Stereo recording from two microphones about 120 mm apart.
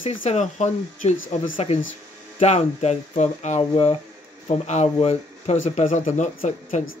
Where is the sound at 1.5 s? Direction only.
60° left (ahead or behind).